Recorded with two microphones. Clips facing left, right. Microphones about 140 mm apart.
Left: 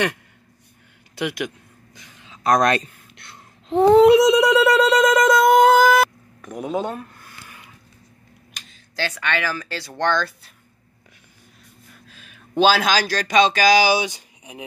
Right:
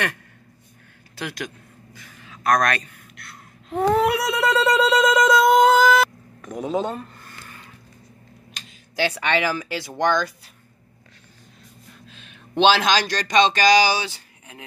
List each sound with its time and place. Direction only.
1.1 s a man's voice: 15° left (ahead or behind)
4.7 s a sound: centre (ahead or behind)
9.1 s speech: 25° right (ahead or behind); by 10.3 s 10° right (ahead or behind)
12.1 s speech: 5° left (ahead or behind)